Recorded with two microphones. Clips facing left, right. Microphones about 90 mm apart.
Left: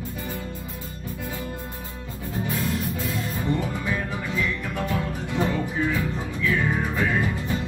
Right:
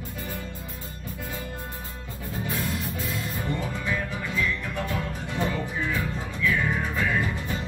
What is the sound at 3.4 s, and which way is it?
Music, 20° left (ahead or behind).